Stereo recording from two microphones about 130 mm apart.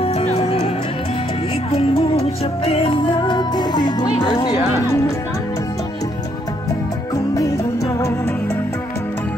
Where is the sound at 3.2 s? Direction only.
35° left (ahead or behind).